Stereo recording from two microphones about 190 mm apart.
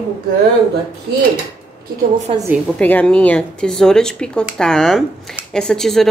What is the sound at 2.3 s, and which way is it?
Speech, 30° right (ahead or behind).